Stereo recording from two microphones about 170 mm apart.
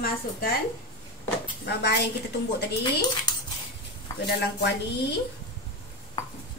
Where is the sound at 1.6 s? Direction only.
75° left (ahead or behind).